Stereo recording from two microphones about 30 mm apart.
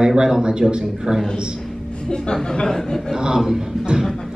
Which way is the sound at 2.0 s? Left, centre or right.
Left.